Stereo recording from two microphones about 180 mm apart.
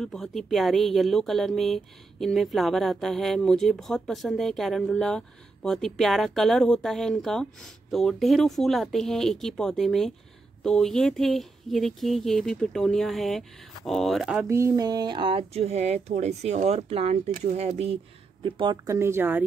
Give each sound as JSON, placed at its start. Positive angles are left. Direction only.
{"t": 0.0, "sound": "speech", "side_deg": 0}